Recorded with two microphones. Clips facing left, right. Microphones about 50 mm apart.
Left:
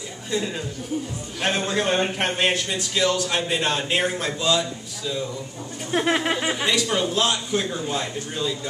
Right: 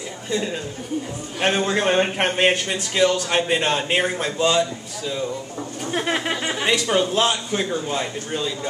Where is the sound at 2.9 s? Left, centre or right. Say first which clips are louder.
Right 4 dB; centre.